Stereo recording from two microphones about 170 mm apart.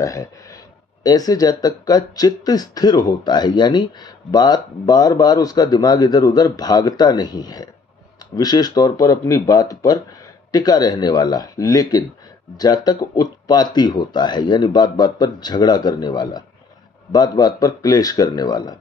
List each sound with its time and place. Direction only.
0.0 s speech: 20° left (ahead or behind)